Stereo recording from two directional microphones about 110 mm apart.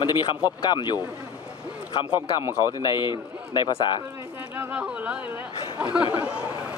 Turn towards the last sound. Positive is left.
turn(degrees=-10)  # may be behind; listen again after turning